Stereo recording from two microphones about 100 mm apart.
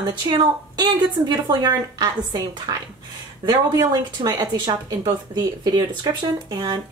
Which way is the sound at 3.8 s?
40° right (ahead or behind).